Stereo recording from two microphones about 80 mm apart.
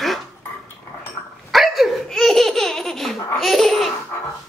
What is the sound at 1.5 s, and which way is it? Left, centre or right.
Laughter, centre.